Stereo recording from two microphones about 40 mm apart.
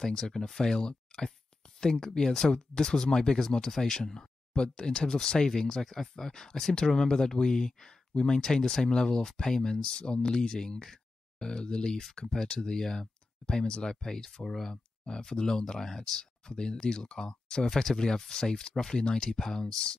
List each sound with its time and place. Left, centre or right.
0.0 s speech: centre
9.9 s speech: left; by 14.7 s centre
14.7 s speech: centre